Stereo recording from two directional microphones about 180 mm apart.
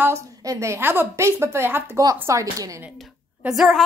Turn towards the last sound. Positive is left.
turn(degrees=0)  # may be behind; listen again after turning